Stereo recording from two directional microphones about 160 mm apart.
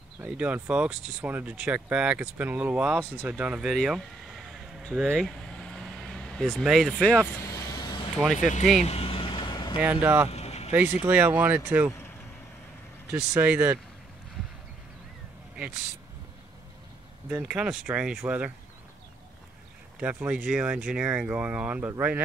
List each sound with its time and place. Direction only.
0.2 s speech: 10° right (ahead or behind)
4.5 s vehicle: centre (ahead or behind)
7.4 s vehicle: 20° left (ahead or behind)
8.4 s speech: 50° left (ahead or behind)
8.8 s vehicle: 40° left (ahead or behind)
9.8 s speech: 10° right (ahead or behind)
10.3 s vehicle: 40° left (ahead or behind)
11.0 s speech: 10° right (ahead or behind)
13.1 s speech: 10° right (ahead or behind)
15.5 s vehicle: 5° right (ahead or behind)
17.3 s speech: 5° right (ahead or behind)
20.0 s speech: 10° right (ahead or behind)